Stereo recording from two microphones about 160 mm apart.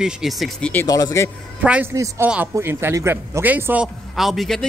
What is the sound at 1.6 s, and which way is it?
Speech, 10° right (ahead or behind).